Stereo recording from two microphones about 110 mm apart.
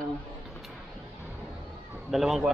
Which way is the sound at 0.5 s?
Centre (ahead or behind).